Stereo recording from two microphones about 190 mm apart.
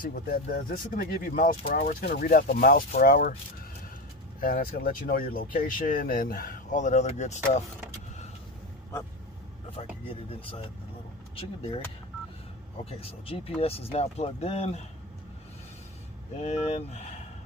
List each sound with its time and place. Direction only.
0.0 s speech: 50° left (ahead or behind)
4.4 s speech: 50° left (ahead or behind)
9.7 s speech: 30° left (ahead or behind)
13.0 s speech: 30° left (ahead or behind)
16.3 s speech: 35° left (ahead or behind)